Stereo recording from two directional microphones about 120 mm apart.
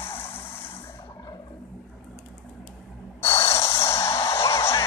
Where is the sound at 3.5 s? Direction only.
25° left (ahead or behind).